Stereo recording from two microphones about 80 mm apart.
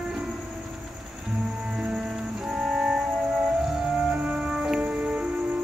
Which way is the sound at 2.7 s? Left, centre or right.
Centre.